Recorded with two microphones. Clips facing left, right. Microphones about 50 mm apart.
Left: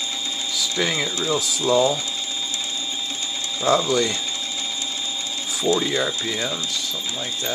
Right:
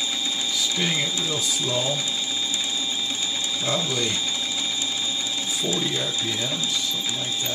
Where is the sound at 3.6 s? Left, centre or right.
Left.